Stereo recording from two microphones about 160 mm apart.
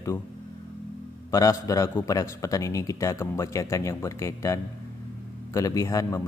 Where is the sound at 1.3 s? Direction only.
20° left (ahead or behind).